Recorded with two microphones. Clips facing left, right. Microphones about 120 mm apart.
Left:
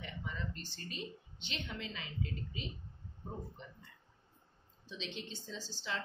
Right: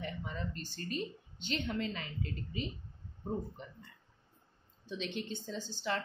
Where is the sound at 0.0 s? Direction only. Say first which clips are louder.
Right 4 dB; 40° right (ahead or behind).